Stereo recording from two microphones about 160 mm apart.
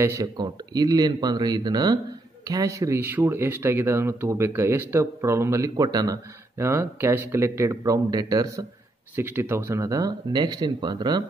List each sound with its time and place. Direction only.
0.0 s speech: 20° right (ahead or behind)